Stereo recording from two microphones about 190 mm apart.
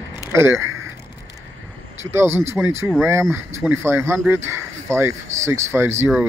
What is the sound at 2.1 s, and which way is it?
Speech, 15° right (ahead or behind).